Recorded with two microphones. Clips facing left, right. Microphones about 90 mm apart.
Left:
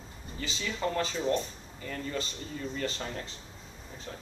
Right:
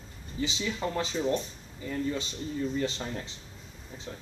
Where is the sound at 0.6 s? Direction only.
10° right (ahead or behind).